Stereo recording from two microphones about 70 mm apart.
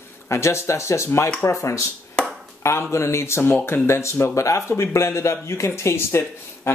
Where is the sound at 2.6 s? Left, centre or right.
Left.